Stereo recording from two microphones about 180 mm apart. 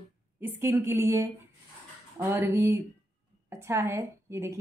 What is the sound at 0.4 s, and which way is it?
A woman's voice, 15° right (ahead or behind).